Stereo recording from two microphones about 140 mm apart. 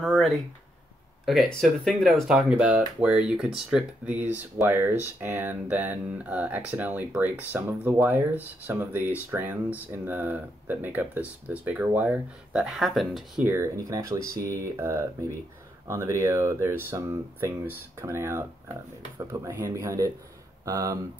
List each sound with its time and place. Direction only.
0.0 s a sound: centre (ahead or behind)
1.2 s speech: centre (ahead or behind)
13.4 s speech: 15° right (ahead or behind)
19.5 s speech: 20° right (ahead or behind)